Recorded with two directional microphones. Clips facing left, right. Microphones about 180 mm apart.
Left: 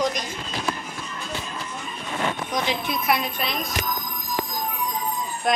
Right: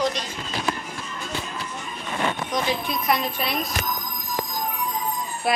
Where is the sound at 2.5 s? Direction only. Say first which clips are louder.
Right 1 dB; 10° left (ahead or behind); by 3.7 s 5° right (ahead or behind).